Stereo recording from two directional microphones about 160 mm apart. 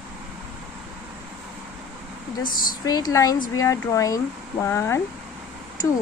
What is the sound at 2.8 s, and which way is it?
A woman's voice, 25° left (ahead or behind).